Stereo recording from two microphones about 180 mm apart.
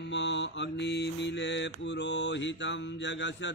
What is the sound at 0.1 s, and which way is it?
Mantra, 80° left.